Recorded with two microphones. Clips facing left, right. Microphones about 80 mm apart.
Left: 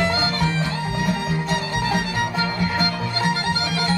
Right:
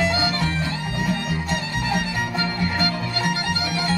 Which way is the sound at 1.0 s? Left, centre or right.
Centre.